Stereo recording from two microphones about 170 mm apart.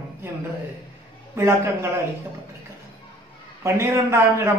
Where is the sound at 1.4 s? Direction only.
15° right (ahead or behind).